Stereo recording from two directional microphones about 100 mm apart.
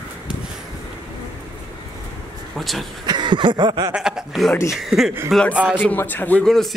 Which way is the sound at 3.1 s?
50° right (ahead or behind).